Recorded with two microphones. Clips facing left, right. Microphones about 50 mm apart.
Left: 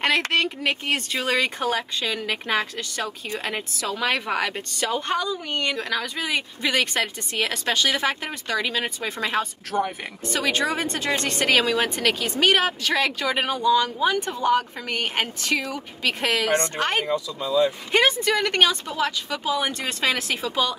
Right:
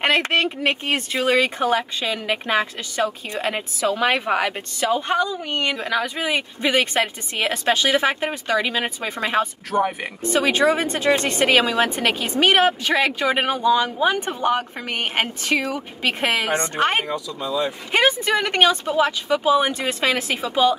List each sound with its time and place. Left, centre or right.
0.0 s a woman's voice: centre
5.1 s a woman's voice: centre
17.4 s speech: right
18.5 s speech: centre